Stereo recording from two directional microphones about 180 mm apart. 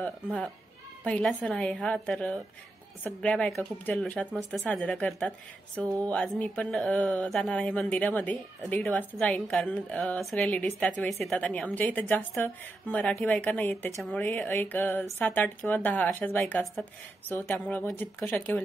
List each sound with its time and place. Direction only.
0.0 s a woman's voice: 5° left (ahead or behind)